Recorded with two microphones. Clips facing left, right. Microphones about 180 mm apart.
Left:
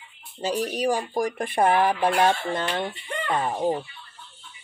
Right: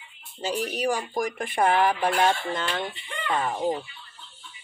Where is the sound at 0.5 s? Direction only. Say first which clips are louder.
Left 2 dB; 35° left (ahead or behind).